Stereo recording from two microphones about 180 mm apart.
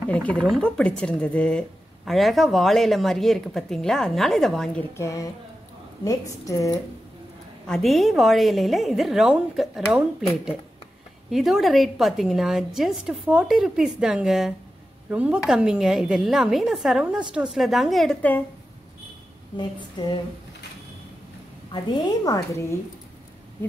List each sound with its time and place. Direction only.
0.1 s speech: 5° left (ahead or behind)
4.9 s speech: 20° left (ahead or behind)
7.6 s speech: centre (ahead or behind)
11.2 s speech: centre (ahead or behind)
19.5 s a sound: 25° left (ahead or behind)
22.0 s speech: 20° left (ahead or behind)